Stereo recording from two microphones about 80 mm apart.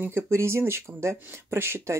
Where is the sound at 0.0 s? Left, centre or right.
Right.